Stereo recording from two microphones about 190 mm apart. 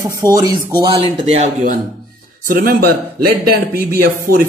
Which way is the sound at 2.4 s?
50° right (ahead or behind).